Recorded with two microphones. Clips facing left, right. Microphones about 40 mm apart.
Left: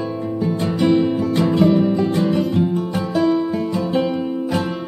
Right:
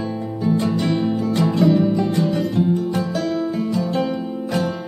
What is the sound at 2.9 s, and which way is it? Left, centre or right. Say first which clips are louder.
Music: left 4 dB; centre.